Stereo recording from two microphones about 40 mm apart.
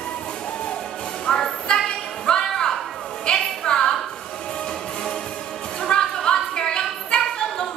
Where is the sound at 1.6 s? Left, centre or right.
Centre.